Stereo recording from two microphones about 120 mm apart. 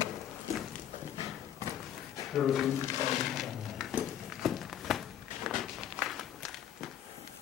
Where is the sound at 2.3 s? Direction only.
Centre (ahead or behind).